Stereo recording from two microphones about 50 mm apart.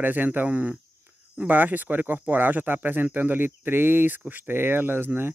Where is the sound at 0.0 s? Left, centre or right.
Right.